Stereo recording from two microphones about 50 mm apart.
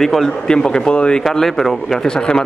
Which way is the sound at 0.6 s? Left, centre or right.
Centre.